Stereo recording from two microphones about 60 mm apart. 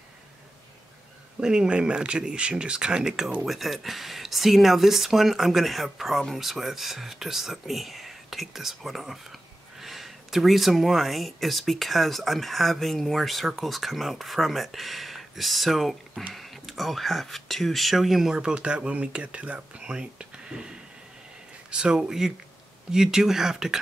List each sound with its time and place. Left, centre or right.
1.4 s speech: centre